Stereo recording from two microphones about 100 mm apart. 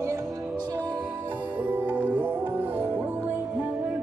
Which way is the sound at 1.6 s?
20° right (ahead or behind).